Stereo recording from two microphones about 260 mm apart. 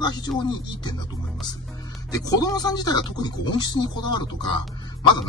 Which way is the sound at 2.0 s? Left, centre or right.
Centre.